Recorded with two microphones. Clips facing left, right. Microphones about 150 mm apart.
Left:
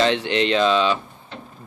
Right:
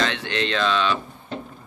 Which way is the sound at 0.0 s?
25° left (ahead or behind).